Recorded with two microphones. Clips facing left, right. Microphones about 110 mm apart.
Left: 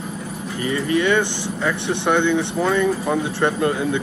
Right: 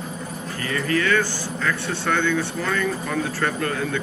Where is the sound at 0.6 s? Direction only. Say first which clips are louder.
Left 4 dB; 20° left (ahead or behind).